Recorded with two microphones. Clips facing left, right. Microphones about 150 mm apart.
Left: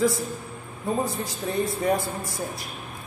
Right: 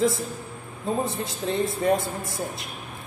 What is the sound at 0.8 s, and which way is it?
A woman's voice, 25° right (ahead or behind).